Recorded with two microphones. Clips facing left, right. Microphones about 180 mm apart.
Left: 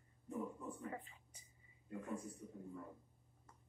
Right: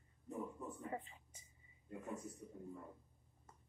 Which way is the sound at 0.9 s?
25° right (ahead or behind).